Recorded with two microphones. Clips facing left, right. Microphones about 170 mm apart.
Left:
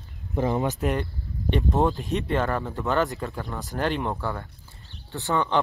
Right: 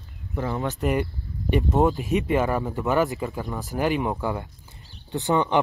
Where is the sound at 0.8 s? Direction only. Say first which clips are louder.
Right 2 dB; 5° right (ahead or behind).